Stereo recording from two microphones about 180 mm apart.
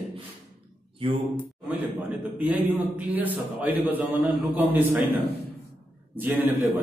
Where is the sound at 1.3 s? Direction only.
10° right (ahead or behind).